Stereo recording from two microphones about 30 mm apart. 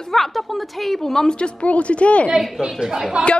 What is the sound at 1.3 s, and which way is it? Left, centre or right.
Speech, left.